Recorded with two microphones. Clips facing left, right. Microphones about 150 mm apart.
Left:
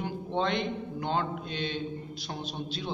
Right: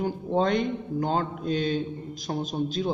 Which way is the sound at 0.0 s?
40° right (ahead or behind).